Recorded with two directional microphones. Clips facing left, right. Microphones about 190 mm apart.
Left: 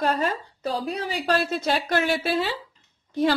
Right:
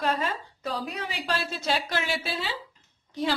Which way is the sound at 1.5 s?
55° left (ahead or behind).